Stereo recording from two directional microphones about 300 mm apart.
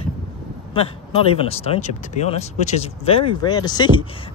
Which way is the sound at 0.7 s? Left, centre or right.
Centre.